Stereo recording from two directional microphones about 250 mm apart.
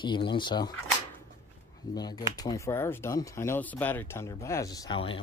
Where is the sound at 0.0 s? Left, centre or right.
Centre.